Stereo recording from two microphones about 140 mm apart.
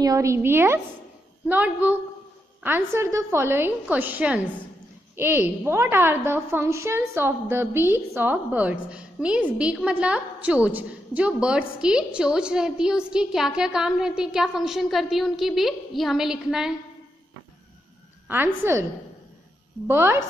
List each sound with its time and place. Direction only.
0.0 s a woman's voice: 20° right (ahead or behind); by 16.7 s 5° right (ahead or behind)
18.3 s a woman's voice: 15° right (ahead or behind)
19.9 s a woman's voice: 15° right (ahead or behind)